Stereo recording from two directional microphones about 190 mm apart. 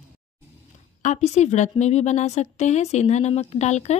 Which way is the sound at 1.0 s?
35° left (ahead or behind).